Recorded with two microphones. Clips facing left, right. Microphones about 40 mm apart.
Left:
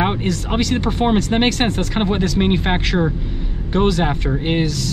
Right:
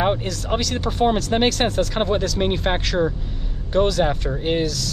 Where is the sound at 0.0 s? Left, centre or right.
Centre.